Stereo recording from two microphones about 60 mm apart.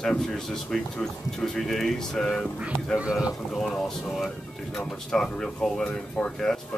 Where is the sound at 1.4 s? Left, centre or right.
Centre.